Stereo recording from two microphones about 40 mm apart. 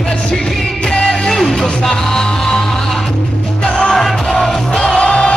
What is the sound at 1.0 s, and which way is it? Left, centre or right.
Music, centre.